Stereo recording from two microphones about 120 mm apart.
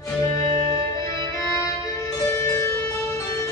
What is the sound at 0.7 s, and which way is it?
Music, 25° left (ahead or behind).